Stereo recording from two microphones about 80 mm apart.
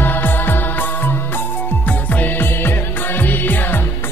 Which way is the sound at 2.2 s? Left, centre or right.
Left.